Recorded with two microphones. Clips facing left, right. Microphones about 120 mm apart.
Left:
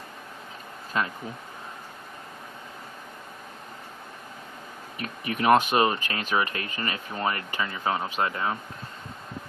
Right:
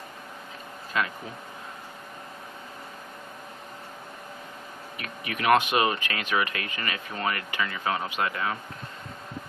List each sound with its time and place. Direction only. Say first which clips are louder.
1.0 s speech: even; 35° left (ahead or behind)
4.9 s speech: left 4 dB; 35° left (ahead or behind)